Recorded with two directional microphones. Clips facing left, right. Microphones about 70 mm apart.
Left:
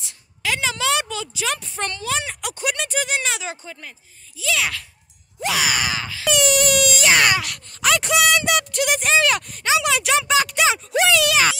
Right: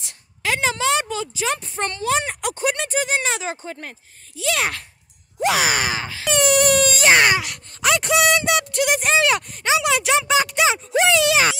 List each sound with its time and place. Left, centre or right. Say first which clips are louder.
0.4 s a child's voice: right 2 dB; right